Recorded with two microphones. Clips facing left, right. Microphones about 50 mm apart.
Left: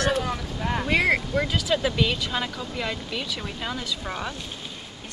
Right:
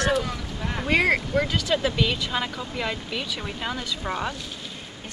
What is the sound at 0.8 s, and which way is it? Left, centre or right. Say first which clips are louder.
Speech: right 2 dB; centre.